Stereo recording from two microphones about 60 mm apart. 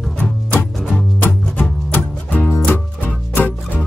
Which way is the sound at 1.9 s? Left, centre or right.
Left.